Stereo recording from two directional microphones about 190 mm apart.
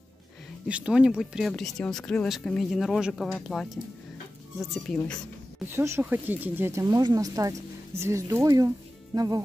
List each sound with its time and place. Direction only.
0.7 s speech: 5° right (ahead or behind)
5.7 s speech: 15° right (ahead or behind)